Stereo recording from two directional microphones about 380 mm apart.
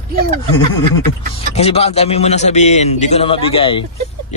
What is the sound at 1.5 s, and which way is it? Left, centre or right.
A man's voice, centre.